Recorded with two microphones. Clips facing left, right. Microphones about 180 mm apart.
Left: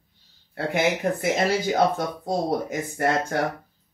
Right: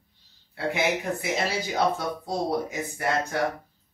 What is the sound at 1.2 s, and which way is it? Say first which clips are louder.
Speech: left 5 dB; 55° left (ahead or behind).